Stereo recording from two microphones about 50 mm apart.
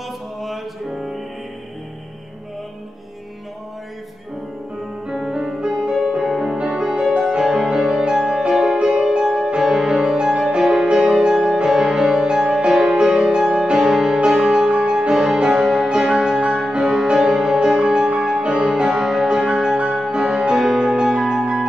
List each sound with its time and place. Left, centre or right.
0.4 s music: centre
5.1 s music: centre
6.6 s music: centre